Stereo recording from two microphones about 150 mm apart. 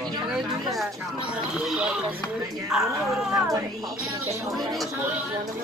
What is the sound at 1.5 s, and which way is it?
Speech, 5° right (ahead or behind).